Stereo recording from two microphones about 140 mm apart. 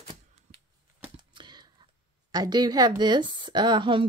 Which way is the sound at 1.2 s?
35° right (ahead or behind).